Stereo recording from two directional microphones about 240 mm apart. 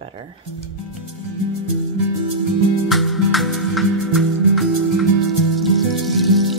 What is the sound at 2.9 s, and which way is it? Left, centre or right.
Music, centre.